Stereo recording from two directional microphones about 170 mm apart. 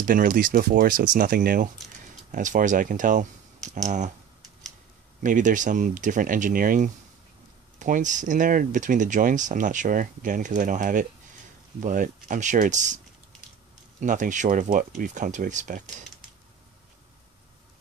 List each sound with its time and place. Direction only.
0.0 s speech: 55° right (ahead or behind)
5.2 s speech: 50° right (ahead or behind)